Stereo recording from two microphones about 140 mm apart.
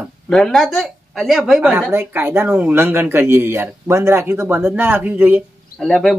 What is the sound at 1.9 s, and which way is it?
Speech, 15° right (ahead or behind).